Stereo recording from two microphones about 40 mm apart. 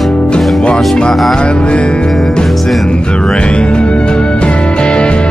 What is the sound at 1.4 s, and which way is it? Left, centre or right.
Music, left.